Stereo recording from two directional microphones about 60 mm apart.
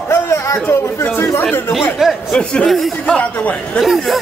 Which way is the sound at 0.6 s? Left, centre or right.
Left.